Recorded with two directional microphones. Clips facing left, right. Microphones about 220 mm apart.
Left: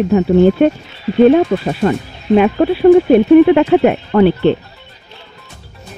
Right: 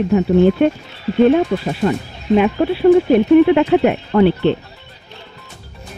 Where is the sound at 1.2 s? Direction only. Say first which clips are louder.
Left 5 dB; 50° left (ahead or behind).